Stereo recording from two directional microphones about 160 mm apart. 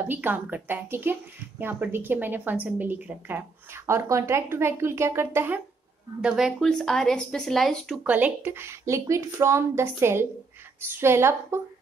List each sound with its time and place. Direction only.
0.1 s speech: 10° right (ahead or behind)
6.2 s speech: 5° right (ahead or behind)
8.1 s speech: 10° right (ahead or behind)